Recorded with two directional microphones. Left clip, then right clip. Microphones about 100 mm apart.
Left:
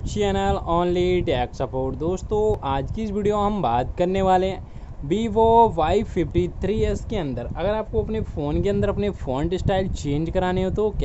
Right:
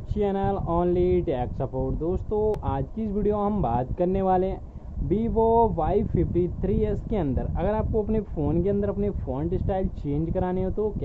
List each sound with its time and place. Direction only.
0.1 s speech: 20° left (ahead or behind)
6.9 s speech: 10° left (ahead or behind)
8.5 s speech: 20° left (ahead or behind)